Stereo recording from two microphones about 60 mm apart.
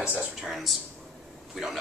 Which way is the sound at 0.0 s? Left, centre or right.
Right.